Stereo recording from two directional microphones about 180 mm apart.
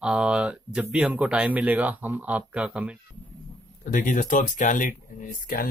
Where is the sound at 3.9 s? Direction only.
50° left (ahead or behind).